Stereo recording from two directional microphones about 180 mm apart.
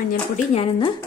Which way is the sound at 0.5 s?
30° left (ahead or behind).